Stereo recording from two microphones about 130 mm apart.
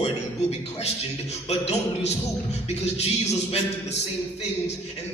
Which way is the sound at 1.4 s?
55° left (ahead or behind).